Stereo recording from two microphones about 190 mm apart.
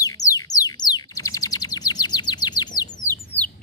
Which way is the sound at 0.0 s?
20° left (ahead or behind).